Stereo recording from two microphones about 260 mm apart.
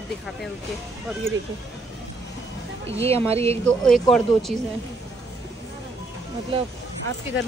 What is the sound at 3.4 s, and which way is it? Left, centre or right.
Speech, centre.